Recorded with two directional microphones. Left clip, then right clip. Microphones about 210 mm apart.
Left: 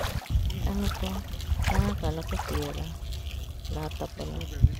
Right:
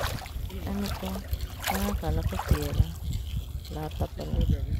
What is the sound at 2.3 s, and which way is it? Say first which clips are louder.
Speech: even; 15° right (ahead or behind).